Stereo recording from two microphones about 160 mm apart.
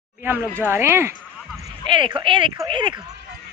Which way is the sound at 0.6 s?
15° right (ahead or behind).